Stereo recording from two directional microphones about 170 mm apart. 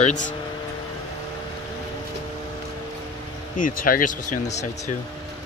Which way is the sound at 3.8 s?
55° left (ahead or behind).